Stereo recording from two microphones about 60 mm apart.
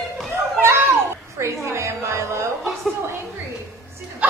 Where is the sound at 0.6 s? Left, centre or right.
Right.